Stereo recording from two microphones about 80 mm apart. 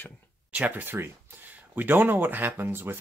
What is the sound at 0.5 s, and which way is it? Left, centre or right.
Speech, centre.